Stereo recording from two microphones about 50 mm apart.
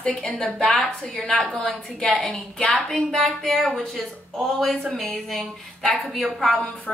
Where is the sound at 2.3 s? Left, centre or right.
Left.